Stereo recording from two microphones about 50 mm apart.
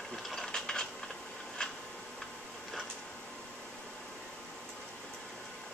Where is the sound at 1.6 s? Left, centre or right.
Centre.